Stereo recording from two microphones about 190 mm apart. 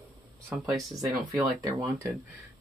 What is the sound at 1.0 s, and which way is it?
Speech, 10° right (ahead or behind).